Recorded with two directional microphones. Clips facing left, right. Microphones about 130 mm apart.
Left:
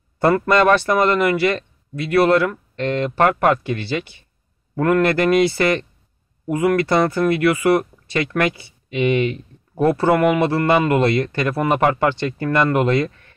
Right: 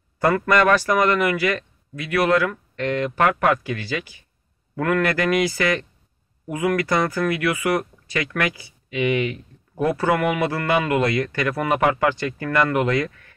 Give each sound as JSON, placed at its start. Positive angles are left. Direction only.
{"t": 0.2, "sound": "speech", "side_deg": 30}